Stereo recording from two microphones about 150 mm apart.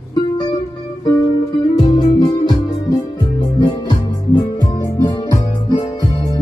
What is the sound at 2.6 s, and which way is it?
Music, 25° left (ahead or behind).